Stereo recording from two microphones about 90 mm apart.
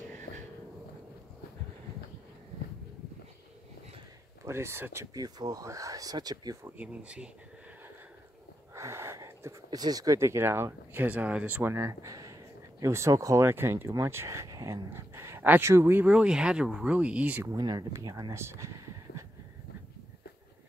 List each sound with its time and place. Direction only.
4.5 s speech: 30° right (ahead or behind)
5.1 s speech: 45° right (ahead or behind)
6.8 s speech: 15° right (ahead or behind)
8.7 s a sound: 30° right (ahead or behind)
9.7 s speech: 45° right (ahead or behind); by 11.7 s 20° right (ahead or behind)
11.7 s speech: 35° right (ahead or behind)
14.9 s a sound: 30° right (ahead or behind)
15.6 s speech: 30° right (ahead or behind)
17.6 s speech: 45° right (ahead or behind)
18.3 s a sound: 30° right (ahead or behind)